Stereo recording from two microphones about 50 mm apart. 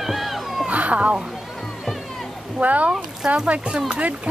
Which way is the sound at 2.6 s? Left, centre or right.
Right.